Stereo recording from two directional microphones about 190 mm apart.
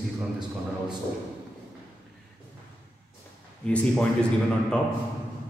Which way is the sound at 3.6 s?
5° left (ahead or behind).